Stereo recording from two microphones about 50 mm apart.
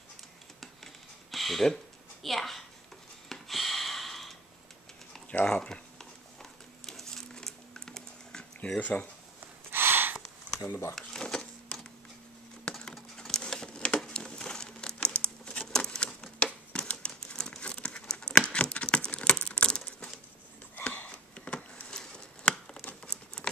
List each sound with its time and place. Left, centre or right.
1.3 s a woman's voice: centre
3.3 s a sound: centre
5.4 s speech: centre
6.9 s a sound: centre
8.7 s speech: left
9.7 s gasp: right
10.7 s speech: left
11.0 s a sound: centre
12.7 s typing: centre
13.4 s crumpling: centre
15.6 s typewriter: centre
20.7 s sniff: left
21.1 s chopping: left
23.0 s crumpling: centre